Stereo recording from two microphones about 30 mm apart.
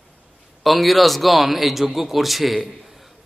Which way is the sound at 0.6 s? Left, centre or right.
Centre.